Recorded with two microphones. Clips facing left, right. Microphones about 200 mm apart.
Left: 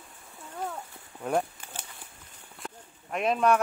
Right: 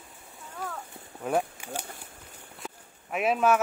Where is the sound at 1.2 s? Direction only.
5° right (ahead or behind).